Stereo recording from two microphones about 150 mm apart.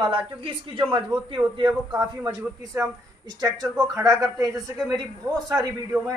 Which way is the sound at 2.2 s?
15° right (ahead or behind).